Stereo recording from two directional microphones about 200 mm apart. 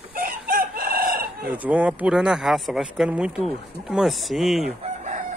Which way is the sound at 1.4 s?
10° right (ahead or behind).